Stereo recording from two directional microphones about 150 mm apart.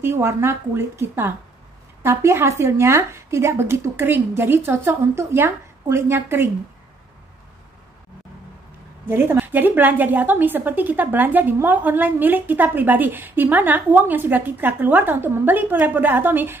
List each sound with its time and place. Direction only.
0.0 s a woman's voice: 15° right (ahead or behind)
9.0 s a woman's voice: 15° right (ahead or behind)